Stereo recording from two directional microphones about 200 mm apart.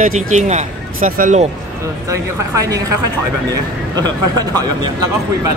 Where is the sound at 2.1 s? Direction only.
15° right (ahead or behind).